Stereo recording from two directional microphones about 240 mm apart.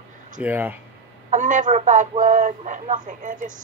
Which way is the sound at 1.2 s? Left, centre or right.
Right.